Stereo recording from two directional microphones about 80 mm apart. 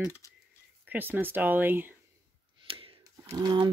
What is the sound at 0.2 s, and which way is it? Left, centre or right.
Typing, left.